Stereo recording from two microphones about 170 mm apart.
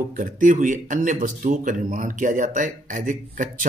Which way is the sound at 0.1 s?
50° right (ahead or behind).